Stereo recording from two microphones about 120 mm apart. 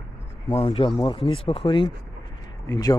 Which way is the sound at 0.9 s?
35° left (ahead or behind).